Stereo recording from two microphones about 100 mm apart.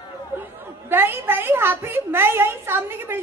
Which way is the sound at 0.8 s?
20° right (ahead or behind).